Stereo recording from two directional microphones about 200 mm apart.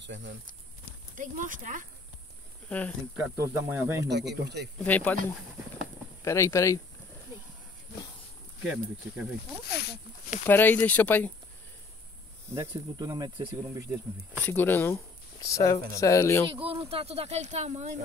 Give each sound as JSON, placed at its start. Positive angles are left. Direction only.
{"t": 0.0, "sound": "speech", "side_deg": -65}
{"t": 1.1, "sound": "speech", "side_deg": -40}
{"t": 3.2, "sound": "speech", "side_deg": -15}
{"t": 4.1, "sound": "speech", "side_deg": -55}
{"t": 4.8, "sound": "speech", "side_deg": 10}
{"t": 6.2, "sound": "speech", "side_deg": 15}
{"t": 7.3, "sound": "a sound", "side_deg": -15}
{"t": 8.6, "sound": "speech", "side_deg": -5}
{"t": 9.7, "sound": "speech", "side_deg": 55}
{"t": 10.4, "sound": "speech", "side_deg": 10}
{"t": 12.4, "sound": "speech", "side_deg": -15}
{"t": 14.4, "sound": "speech", "side_deg": 10}
{"t": 16.4, "sound": "speech", "side_deg": -25}